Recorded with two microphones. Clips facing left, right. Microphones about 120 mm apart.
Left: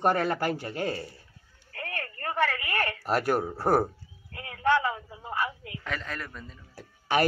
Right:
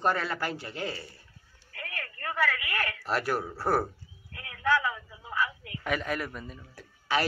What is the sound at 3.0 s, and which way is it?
Speech, 45° left (ahead or behind).